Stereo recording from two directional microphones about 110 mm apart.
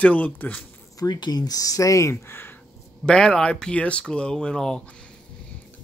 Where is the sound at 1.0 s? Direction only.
40° left (ahead or behind); by 2.6 s 20° left (ahead or behind).